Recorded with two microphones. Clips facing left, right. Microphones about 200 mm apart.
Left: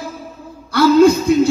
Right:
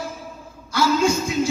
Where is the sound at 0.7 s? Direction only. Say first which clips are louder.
Left 9 dB; 60° left (ahead or behind).